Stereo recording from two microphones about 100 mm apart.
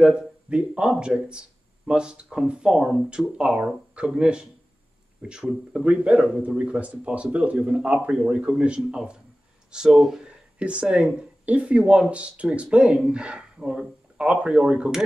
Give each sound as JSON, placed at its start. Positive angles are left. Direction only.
{"t": 0.0, "sound": "speech", "side_deg": -10}